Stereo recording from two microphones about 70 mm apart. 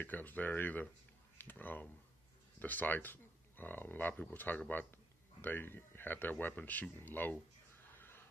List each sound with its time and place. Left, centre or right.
0.0 s speech: left